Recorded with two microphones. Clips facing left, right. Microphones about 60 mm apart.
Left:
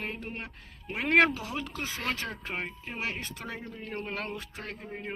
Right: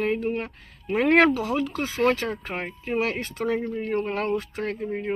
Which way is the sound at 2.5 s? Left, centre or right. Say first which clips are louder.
Right 8 dB; right.